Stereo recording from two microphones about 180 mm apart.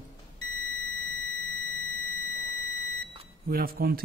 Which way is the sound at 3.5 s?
60° right (ahead or behind).